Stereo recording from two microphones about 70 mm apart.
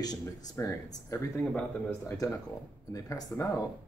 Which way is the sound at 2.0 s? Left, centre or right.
Left.